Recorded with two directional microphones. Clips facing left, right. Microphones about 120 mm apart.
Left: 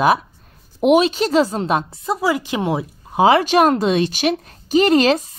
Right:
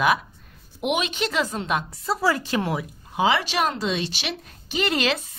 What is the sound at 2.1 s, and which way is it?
Speech, 15° left (ahead or behind).